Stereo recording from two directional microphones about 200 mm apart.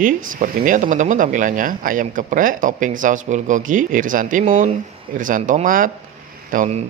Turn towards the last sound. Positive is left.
turn(degrees=-35)  # may be behind; listen again after turning